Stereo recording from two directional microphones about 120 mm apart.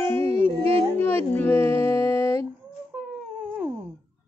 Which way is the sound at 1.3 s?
20° left (ahead or behind).